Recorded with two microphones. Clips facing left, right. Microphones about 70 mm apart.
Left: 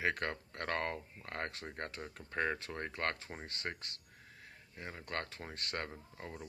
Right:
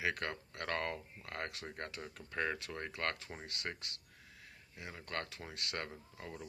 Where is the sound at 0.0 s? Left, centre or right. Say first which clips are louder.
Left 2 dB; left.